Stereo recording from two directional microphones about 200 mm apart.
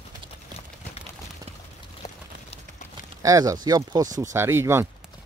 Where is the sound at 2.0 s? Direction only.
20° left (ahead or behind).